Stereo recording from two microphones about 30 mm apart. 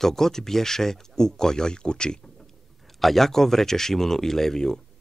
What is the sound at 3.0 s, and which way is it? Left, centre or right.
Speech, centre.